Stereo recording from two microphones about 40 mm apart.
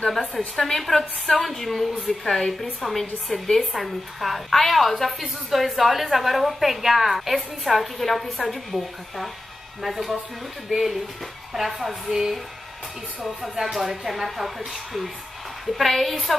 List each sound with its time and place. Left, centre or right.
0.1 s a woman's voice: centre
13.6 s a woman's voice: centre